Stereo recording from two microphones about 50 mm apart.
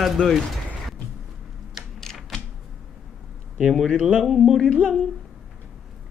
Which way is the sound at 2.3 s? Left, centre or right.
Centre.